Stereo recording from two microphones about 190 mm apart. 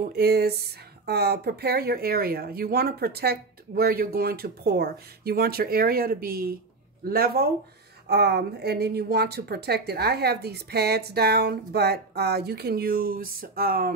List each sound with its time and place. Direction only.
0.0 s speech: 55° right (ahead or behind)